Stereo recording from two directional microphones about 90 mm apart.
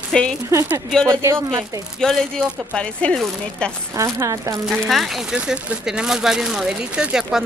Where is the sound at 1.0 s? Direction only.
30° right (ahead or behind).